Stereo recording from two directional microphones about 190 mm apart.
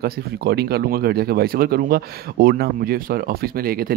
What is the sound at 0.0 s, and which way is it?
Speech, 55° right (ahead or behind).